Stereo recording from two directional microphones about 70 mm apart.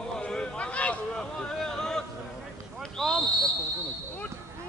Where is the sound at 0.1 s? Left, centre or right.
Centre.